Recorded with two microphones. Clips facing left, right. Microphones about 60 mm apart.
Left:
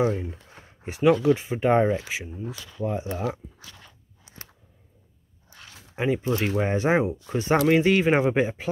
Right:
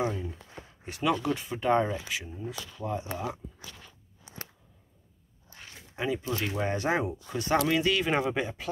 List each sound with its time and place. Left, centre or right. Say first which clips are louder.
0.0 s speech: left 6 dB; left
0.8 s speech: left 9 dB; left
5.9 s speech: left 6 dB; left